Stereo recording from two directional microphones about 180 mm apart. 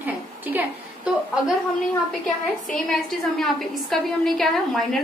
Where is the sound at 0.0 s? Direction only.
10° right (ahead or behind).